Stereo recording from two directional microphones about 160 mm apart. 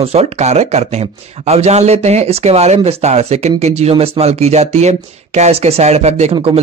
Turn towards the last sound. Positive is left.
turn(degrees=-35)  # may be behind; listen again after turning